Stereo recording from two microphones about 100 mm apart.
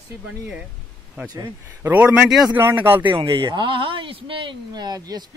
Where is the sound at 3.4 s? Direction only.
55° right (ahead or behind).